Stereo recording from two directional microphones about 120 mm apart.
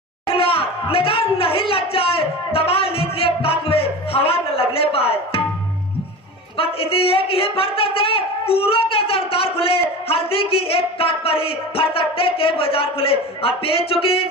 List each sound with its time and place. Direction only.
0.3 s speech: 50° left (ahead or behind)
6.6 s a woman's voice: 50° left (ahead or behind)